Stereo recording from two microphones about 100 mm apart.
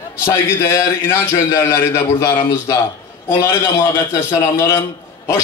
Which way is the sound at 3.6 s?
30° left (ahead or behind).